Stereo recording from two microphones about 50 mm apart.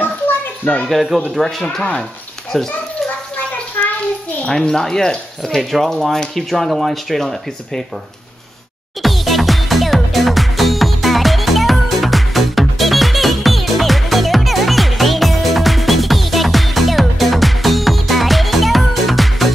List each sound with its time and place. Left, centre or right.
0.8 s speech: centre
1.6 s speech: centre
3.8 s a sound: left
4.5 s speech: centre
5.6 s speech: centre
9.0 s music: centre